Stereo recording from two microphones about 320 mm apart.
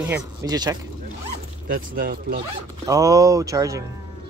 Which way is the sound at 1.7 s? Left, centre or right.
Right.